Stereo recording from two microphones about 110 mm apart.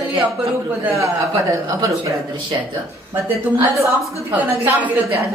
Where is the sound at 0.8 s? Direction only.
30° right (ahead or behind).